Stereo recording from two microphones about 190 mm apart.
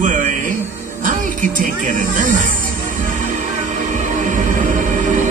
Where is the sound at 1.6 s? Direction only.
45° right (ahead or behind).